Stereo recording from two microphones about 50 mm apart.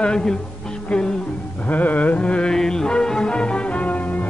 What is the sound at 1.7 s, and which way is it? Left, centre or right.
Music, left.